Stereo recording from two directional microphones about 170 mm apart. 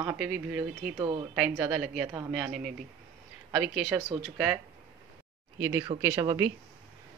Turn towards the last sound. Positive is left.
turn(degrees=-25)  # may be behind; listen again after turning